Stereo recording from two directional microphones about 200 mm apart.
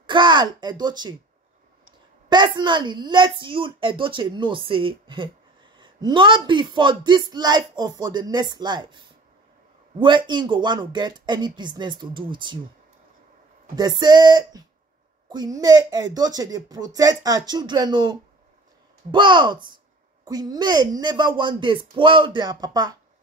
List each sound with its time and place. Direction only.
0.0 s speech: 25° right (ahead or behind)
2.2 s speech: 20° right (ahead or behind)
13.7 s speech: 20° right (ahead or behind)
19.1 s speech: 25° right (ahead or behind)